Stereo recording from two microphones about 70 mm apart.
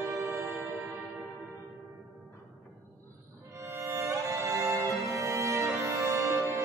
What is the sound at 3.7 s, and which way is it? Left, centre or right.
Violin, right.